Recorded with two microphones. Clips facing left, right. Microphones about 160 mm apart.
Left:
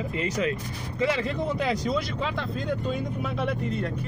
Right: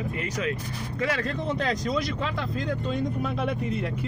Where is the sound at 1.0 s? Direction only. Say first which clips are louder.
Left 2 dB; 5° left (ahead or behind).